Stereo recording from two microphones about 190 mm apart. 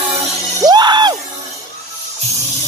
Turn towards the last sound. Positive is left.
turn(degrees=-25)  # may be behind; listen again after turning